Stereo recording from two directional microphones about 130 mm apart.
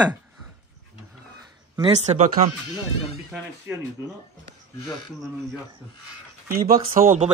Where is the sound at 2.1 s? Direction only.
60° right (ahead or behind).